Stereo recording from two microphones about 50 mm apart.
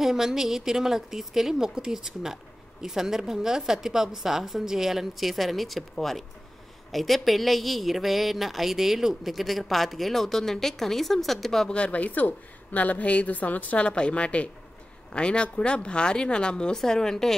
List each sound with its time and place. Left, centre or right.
0.0 s a woman's voice: centre
11.7 s a woman's voice: left; by 17.4 s centre